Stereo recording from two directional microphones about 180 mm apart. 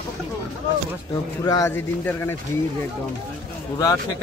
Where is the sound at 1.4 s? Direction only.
20° left (ahead or behind).